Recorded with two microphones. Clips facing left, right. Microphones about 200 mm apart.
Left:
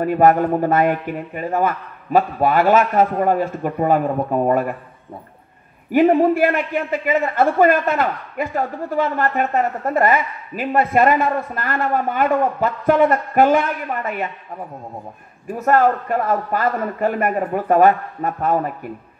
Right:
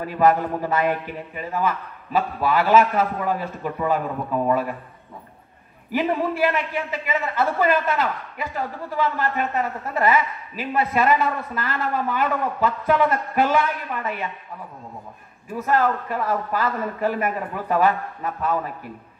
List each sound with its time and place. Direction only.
0.0 s a man's voice: 55° left (ahead or behind)
5.9 s a man's voice: 55° left (ahead or behind)
15.6 s a man's voice: 50° left (ahead or behind)